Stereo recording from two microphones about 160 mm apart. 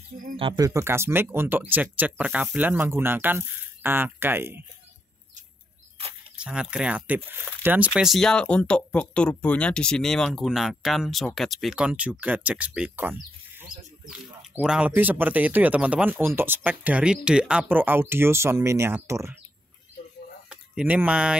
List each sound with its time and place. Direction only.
0.4 s speech: 30° right (ahead or behind)
0.7 s speech: 15° right (ahead or behind)
6.3 s speech: 5° right (ahead or behind)
20.4 s speech: 5° right (ahead or behind)